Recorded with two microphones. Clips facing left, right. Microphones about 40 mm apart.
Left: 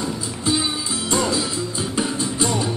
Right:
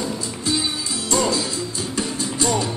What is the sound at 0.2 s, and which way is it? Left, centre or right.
Music, centre.